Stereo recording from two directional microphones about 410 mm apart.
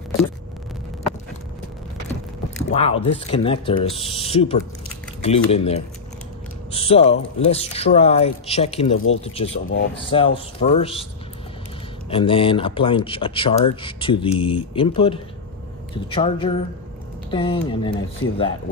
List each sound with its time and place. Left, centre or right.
2.7 s speech: centre
8.9 s speech: left
9.2 s speech: centre
12.1 s speech: centre